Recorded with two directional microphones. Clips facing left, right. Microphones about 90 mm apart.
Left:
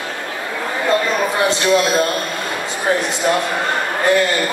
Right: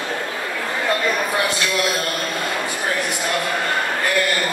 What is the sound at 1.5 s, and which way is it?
Speech, 25° left (ahead or behind).